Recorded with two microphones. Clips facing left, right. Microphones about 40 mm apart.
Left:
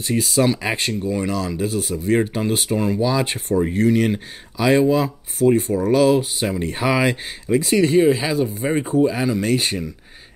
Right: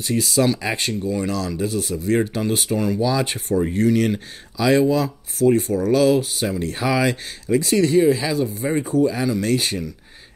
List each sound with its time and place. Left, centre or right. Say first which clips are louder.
0.0 s speech: left 1 dB; centre